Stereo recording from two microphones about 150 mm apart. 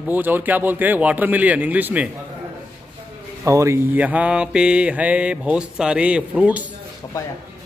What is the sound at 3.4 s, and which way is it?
Mantra, 20° right (ahead or behind).